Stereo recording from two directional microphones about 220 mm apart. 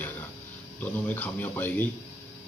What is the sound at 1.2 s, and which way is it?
Speech, 10° left (ahead or behind).